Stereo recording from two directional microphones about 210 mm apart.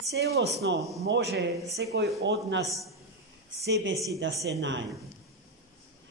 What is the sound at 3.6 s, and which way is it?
Speech, 50° right (ahead or behind).